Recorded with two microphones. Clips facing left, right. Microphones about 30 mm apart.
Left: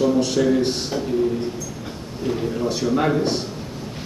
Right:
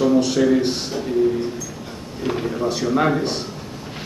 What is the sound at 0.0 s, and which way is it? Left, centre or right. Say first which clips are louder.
A man's voice: right 2 dB; centre.